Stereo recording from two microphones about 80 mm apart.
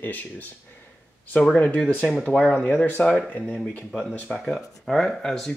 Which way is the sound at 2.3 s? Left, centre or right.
Centre.